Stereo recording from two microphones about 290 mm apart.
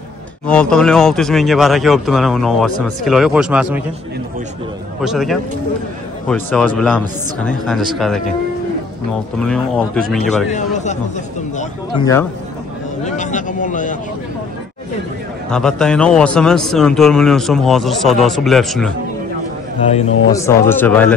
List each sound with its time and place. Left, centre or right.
0.5 s speech: centre
5.0 s speech: centre
9.4 s speech: centre
10.5 s speech: left
13.0 s speech: left
15.5 s speech: centre
19.8 s speech: left
20.2 s speech: centre